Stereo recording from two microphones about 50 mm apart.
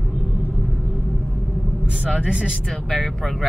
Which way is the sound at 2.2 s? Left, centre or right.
Centre.